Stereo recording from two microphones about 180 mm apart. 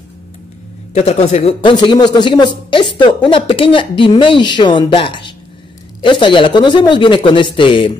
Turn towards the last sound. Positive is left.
turn(degrees=30)  # may be behind; listen again after turning